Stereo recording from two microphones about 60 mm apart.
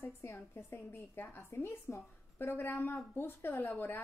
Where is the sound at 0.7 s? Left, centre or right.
Left.